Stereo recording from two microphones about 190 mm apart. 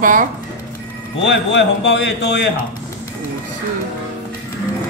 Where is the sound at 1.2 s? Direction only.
70° left (ahead or behind).